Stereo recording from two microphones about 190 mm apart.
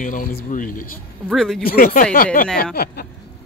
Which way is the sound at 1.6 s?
50° left (ahead or behind).